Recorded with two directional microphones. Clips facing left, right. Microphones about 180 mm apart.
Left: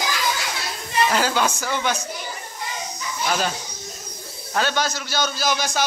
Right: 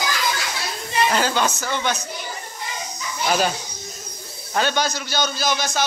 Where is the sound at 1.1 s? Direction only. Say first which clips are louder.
Even; 5° left (ahead or behind).